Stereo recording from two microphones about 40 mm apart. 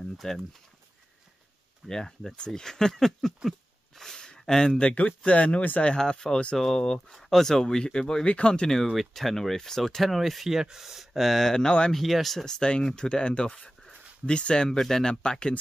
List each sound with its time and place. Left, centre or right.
0.2 s speech: centre
1.9 s speech: centre
3.4 s a sound: centre; by 4.9 s left
4.9 s speech: left
5.9 s speech: centre
8.8 s speech: centre
10.6 s speech: centre
11.5 s speech: left
11.9 s speech: centre
12.4 s speech: left